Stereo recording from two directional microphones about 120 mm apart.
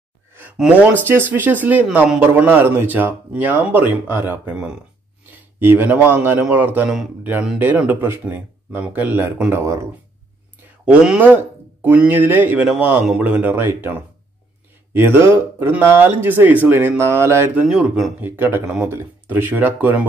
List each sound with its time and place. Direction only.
0.6 s speech: 10° right (ahead or behind)
10.9 s speech: 10° right (ahead or behind)
17.6 s speech: 5° right (ahead or behind)
18.2 s speech: 15° right (ahead or behind)